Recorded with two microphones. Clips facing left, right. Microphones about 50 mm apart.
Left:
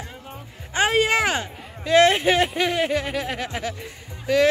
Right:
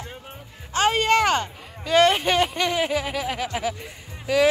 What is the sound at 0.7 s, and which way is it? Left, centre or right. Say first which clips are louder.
Speech: even; centre.